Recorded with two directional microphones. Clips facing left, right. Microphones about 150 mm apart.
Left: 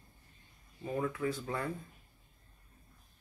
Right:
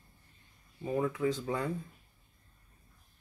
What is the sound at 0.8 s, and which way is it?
Speech, 15° right (ahead or behind).